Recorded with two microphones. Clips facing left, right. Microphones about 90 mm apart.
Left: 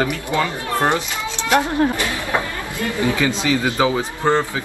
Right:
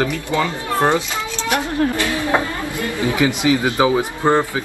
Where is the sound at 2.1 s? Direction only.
20° right (ahead or behind).